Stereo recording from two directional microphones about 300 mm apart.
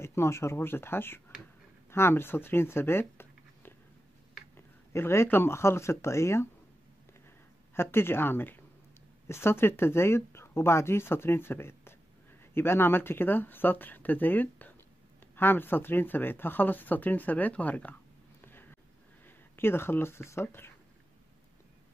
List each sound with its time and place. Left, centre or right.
0.0 s speech: centre
7.7 s speech: centre
18.4 s a sound: centre
19.2 s speech: centre